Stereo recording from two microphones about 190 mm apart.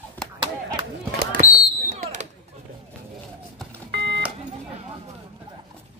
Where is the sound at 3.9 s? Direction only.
60° right (ahead or behind).